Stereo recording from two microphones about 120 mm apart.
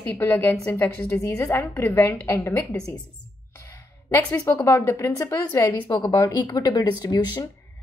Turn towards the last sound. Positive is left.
turn(degrees=35)  # may be behind; listen again after turning